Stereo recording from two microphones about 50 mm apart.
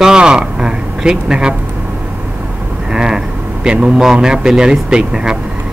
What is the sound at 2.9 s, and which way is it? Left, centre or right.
Vehicle, centre.